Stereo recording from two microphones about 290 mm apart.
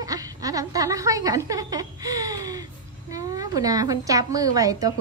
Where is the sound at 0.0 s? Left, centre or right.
Centre.